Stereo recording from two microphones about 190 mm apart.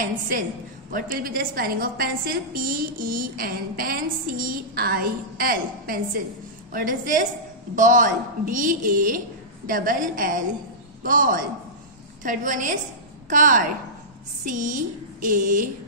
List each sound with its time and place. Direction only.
0.0 s a woman's voice: 45° right (ahead or behind)